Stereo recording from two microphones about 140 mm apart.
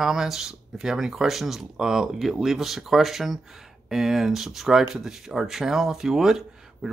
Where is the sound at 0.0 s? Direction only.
5° right (ahead or behind).